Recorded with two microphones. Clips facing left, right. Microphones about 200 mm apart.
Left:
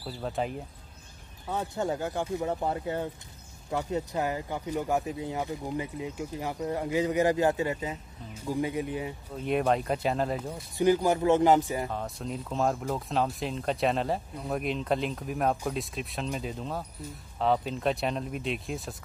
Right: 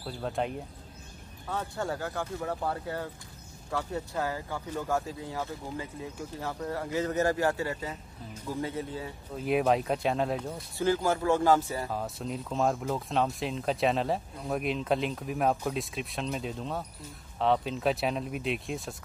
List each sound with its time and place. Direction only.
0.0 s speech: centre (ahead or behind)
1.5 s speech: 20° left (ahead or behind)
9.3 s speech: 5° right (ahead or behind)
10.8 s speech: 15° left (ahead or behind)
11.9 s speech: 5° right (ahead or behind)